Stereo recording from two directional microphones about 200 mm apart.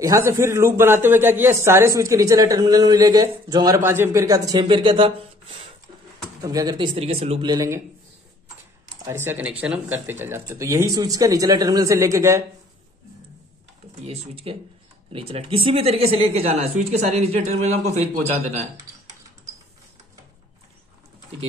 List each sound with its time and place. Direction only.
0.0 s a man's voice: 15° right (ahead or behind)
6.4 s a man's voice: 15° right (ahead or behind)
7.0 s speech: 30° right (ahead or behind)
7.5 s a man's voice: 15° right (ahead or behind)
9.0 s a man's voice: 10° right (ahead or behind)
14.0 s speech: 30° right (ahead or behind)